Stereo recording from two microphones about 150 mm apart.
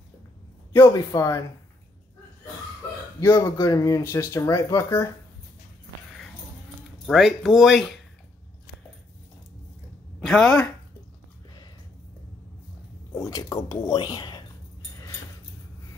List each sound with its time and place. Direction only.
0.7 s speech: 20° left (ahead or behind)
3.2 s speech: 15° left (ahead or behind)
7.1 s speech: centre (ahead or behind)
10.2 s speech: 5° left (ahead or behind)
13.1 s speech: 25° left (ahead or behind)